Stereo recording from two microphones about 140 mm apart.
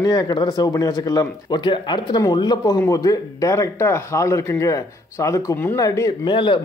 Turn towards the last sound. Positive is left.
turn(degrees=35)  # may be behind; listen again after turning